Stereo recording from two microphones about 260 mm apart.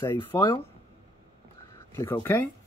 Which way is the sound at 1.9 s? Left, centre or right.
Centre.